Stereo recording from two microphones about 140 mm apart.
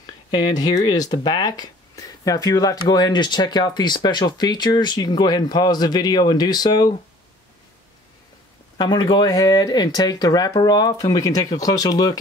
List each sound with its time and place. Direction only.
0.0 s speech: 30° left (ahead or behind)
8.7 s speech: 30° left (ahead or behind)